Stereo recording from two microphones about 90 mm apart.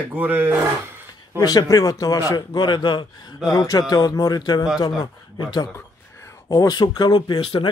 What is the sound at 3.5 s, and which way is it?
Speech, 45° left (ahead or behind).